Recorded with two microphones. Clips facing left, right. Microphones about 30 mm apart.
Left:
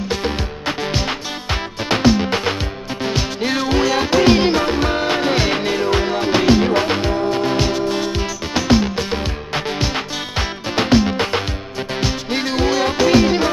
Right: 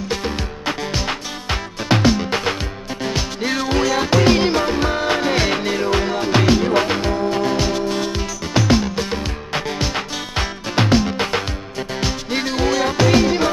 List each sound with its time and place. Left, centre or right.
0.1 s music: centre
3.0 s music: centre
7.4 s music: centre